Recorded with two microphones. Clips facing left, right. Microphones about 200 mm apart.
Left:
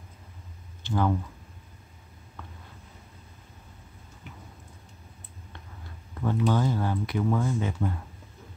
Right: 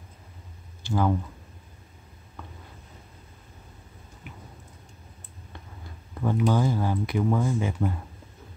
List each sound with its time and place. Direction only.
0.8 s speech: 10° right (ahead or behind)
6.2 s speech: 10° right (ahead or behind)